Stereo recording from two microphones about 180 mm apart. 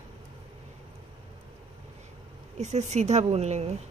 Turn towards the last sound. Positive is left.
turn(degrees=-35)  # may be behind; listen again after turning